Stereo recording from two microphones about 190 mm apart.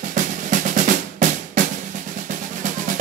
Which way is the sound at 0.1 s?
40° right (ahead or behind).